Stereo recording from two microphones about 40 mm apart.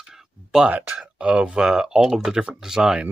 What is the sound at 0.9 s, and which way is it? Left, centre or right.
Speech, right.